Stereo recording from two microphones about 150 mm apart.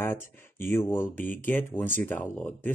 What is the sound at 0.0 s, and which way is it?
Speech, 15° left (ahead or behind).